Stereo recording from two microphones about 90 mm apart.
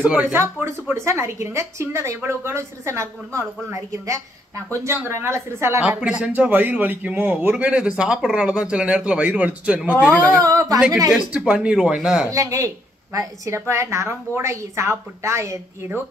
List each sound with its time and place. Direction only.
0.0 s speech: 15° right (ahead or behind)
0.3 s a woman's voice: 30° right (ahead or behind)
5.8 s speech: 10° right (ahead or behind)
10.4 s a woman's voice: 40° right (ahead or behind)
11.1 s speech: 10° right (ahead or behind)
12.3 s a woman's voice: 35° right (ahead or behind)